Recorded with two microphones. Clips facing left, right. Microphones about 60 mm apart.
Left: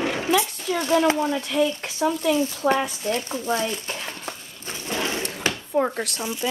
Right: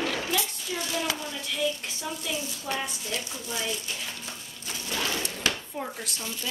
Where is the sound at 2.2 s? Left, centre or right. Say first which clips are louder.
Left 12 dB; left.